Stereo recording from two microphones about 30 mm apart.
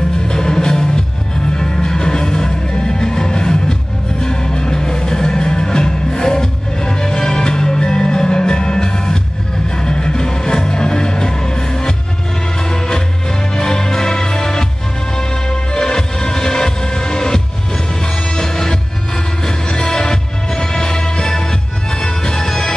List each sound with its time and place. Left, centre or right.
0.3 s music: left
15.7 s music: left